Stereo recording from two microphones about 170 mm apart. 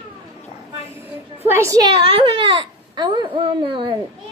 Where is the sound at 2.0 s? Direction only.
30° right (ahead or behind).